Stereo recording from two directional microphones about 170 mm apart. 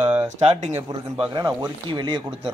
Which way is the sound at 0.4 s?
35° right (ahead or behind).